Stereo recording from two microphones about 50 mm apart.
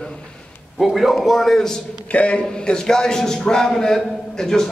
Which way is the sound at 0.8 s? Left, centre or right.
Centre.